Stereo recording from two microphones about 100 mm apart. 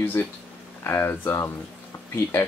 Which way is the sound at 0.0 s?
20° left (ahead or behind).